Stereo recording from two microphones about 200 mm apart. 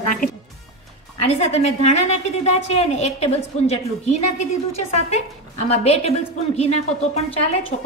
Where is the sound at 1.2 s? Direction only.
30° left (ahead or behind).